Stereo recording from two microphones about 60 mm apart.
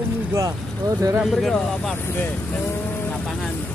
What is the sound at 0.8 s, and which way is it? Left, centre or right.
Speech, right.